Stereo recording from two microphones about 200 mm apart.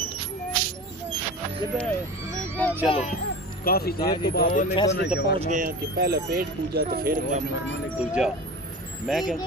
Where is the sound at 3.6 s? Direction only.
50° left (ahead or behind).